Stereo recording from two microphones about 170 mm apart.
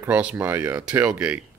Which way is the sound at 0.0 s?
10° right (ahead or behind).